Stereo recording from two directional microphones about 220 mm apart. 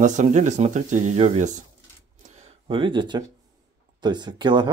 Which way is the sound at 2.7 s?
20° right (ahead or behind).